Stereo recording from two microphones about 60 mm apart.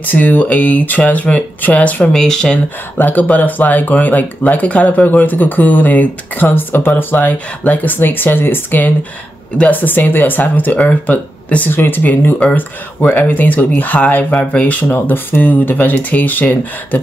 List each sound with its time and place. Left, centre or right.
0.0 s speech: left
2.1 s speech: centre
3.0 s speech: left
11.7 s speech: left
14.9 s speech: left